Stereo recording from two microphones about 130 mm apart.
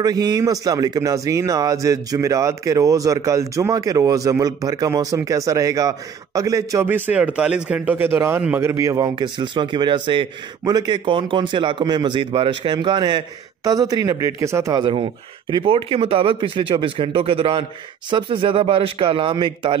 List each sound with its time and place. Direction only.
0.0 s speech: 30° right (ahead or behind)
14.8 s speech: 45° right (ahead or behind)